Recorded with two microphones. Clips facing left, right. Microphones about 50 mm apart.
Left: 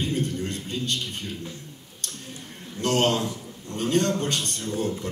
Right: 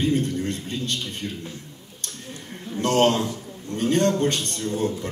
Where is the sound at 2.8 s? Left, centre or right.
Right.